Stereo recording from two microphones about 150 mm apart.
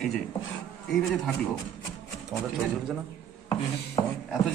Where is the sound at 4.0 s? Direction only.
35° left (ahead or behind).